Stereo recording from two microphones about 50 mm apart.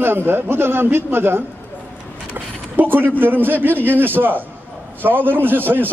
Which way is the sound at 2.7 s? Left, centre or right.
Right.